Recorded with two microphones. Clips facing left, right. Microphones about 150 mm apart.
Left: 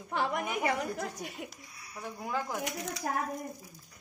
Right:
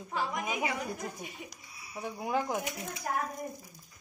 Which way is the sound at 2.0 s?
15° right (ahead or behind).